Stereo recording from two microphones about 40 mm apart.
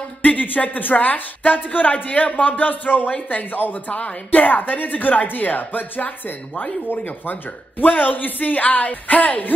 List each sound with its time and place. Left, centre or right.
0.2 s speech: left
7.8 s speech: left